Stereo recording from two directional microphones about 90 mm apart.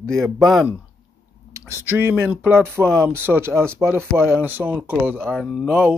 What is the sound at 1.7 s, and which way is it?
Speech, 25° right (ahead or behind).